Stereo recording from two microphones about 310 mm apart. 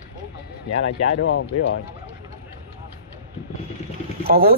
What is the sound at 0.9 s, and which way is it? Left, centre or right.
Speech, left.